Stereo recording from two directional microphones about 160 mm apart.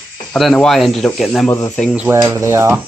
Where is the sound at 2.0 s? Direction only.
15° right (ahead or behind).